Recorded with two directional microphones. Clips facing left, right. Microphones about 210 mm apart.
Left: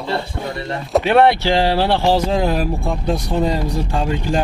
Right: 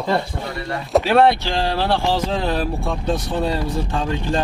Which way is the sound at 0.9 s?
Centre (ahead or behind).